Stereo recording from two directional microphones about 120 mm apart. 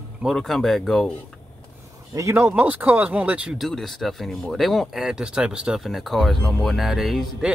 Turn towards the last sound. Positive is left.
turn(degrees=0)  # may be behind; listen again after turning